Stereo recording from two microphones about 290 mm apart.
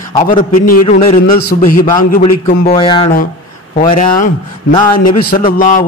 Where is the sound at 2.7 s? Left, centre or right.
Centre.